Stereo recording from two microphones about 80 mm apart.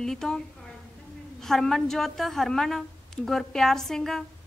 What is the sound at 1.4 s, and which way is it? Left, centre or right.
A woman's voice, centre.